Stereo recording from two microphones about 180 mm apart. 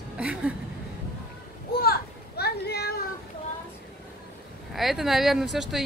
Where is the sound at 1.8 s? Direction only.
60° left (ahead or behind).